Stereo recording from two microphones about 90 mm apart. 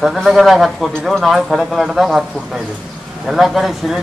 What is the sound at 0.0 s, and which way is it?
Speech, centre (ahead or behind).